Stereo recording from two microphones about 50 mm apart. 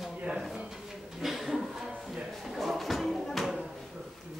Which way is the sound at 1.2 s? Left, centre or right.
Centre.